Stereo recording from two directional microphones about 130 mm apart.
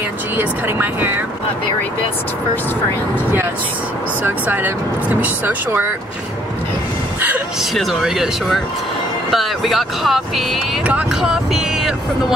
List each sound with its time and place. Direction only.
0.4 s speech: 15° right (ahead or behind)
4.2 s speech: 15° right (ahead or behind)
7.2 s a sound: 10° right (ahead or behind)
7.7 s speech: centre (ahead or behind)